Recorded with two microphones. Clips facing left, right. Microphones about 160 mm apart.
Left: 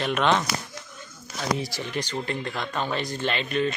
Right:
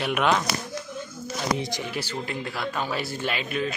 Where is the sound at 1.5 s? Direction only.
20° right (ahead or behind).